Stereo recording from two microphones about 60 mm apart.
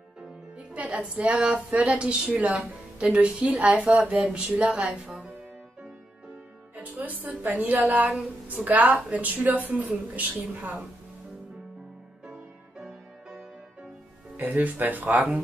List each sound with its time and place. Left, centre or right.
0.6 s a woman's voice: centre
7.2 s speech: right
12.7 s music: centre
14.3 s speech: right